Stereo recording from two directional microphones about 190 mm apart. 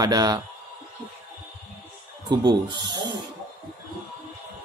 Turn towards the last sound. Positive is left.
turn(degrees=-25)  # may be behind; listen again after turning